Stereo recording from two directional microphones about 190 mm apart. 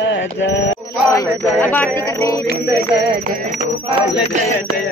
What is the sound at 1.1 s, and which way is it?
Speech, 10° left (ahead or behind).